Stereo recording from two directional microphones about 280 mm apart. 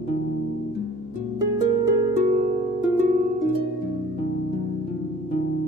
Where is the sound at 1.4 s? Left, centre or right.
Centre.